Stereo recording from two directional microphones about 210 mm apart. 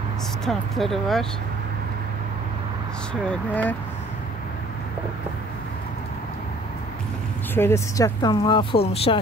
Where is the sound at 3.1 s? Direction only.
5° left (ahead or behind).